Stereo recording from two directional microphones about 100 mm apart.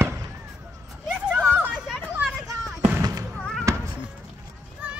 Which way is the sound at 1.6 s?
5° right (ahead or behind).